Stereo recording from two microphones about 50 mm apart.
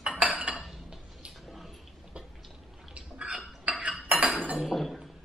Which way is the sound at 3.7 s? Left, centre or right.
Right.